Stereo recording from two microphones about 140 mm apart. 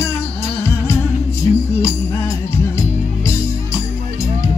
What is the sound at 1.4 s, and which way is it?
Music, 20° left (ahead or behind).